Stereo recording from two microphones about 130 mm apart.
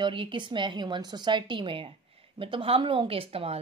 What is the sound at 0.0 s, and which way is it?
A woman's voice, 40° right (ahead or behind).